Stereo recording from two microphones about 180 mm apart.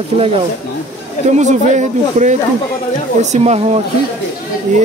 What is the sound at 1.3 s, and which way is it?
Speech, 40° right (ahead or behind).